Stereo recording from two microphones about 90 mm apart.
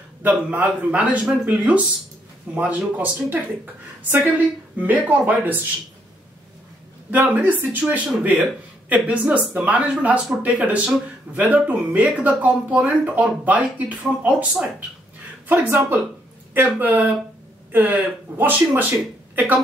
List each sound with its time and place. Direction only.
0.2 s speech: 20° right (ahead or behind)
4.7 s speech: 20° right (ahead or behind)
7.1 s speech: 20° right (ahead or behind)
15.4 s speech: 20° right (ahead or behind)